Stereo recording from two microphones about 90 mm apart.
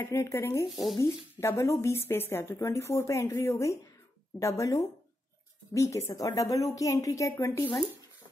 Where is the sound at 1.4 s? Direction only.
30° left (ahead or behind).